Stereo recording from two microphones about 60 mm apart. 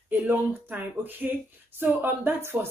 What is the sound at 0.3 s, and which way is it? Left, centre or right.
Speech, right.